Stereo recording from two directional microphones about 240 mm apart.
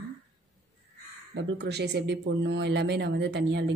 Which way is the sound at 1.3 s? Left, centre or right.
Right.